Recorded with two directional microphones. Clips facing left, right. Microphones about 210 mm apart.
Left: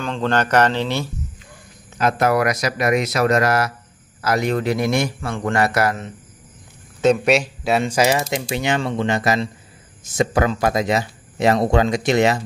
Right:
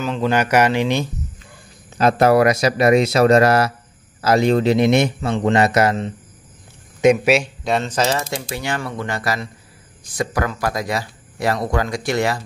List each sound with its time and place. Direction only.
0.0 s speech: 5° right (ahead or behind)
2.0 s speech: 30° right (ahead or behind)
7.2 s speech: centre (ahead or behind); by 12.4 s 20° left (ahead or behind)